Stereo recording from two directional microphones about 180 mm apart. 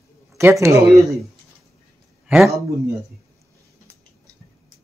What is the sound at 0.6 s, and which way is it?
Speech, 15° right (ahead or behind).